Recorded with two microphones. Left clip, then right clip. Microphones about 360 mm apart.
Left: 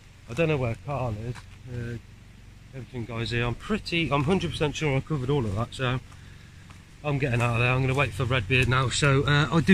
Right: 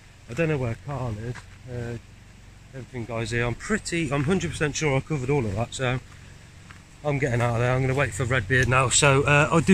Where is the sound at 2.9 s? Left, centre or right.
Centre.